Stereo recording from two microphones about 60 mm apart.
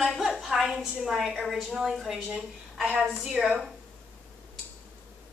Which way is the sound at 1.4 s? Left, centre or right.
Centre.